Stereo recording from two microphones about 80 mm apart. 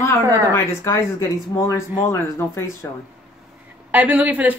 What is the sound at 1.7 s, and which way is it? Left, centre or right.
Speech, left.